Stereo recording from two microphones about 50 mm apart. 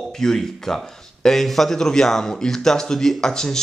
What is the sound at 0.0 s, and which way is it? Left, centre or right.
Speech, centre.